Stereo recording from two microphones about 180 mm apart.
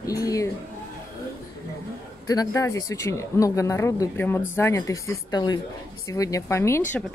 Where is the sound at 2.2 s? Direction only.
20° left (ahead or behind).